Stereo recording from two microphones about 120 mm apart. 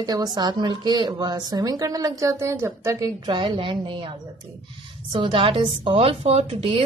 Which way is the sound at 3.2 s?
40° right (ahead or behind).